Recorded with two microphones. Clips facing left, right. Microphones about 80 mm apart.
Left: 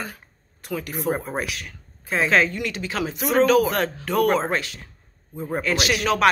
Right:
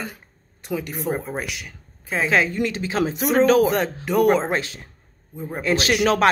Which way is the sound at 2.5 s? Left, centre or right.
Right.